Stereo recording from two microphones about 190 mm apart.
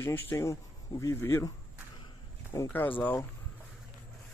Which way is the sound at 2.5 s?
10° left (ahead or behind).